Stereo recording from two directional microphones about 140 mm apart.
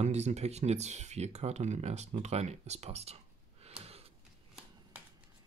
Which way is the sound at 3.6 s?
45° right (ahead or behind).